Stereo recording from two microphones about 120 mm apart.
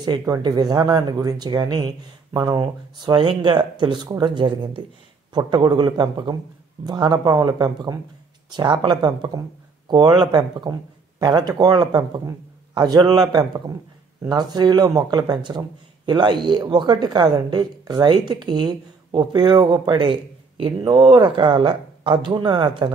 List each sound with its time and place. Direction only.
0.4 s a woman's voice: 35° right (ahead or behind)
14.3 s a woman's voice: 35° right (ahead or behind)